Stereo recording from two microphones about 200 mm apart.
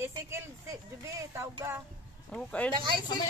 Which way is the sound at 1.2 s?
15° right (ahead or behind).